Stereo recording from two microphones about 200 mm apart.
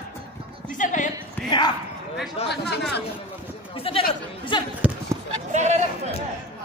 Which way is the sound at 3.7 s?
30° left (ahead or behind).